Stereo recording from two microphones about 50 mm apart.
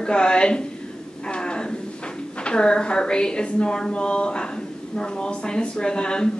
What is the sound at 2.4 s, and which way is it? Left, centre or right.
A woman's voice, centre.